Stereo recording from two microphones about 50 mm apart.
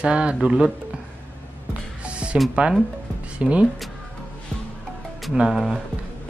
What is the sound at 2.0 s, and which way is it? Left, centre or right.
Music, right.